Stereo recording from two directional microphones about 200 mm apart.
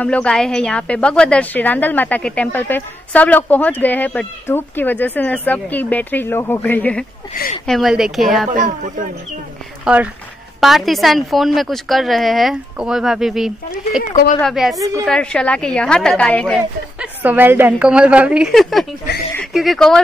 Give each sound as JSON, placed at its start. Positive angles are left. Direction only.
{"t": 0.0, "sound": "a woman's voice", "side_deg": 5}
{"t": 8.5, "sound": "speech", "side_deg": -40}
{"t": 9.9, "sound": "a woman's voice", "side_deg": -5}
{"t": 17.0, "sound": "a woman's voice", "side_deg": -10}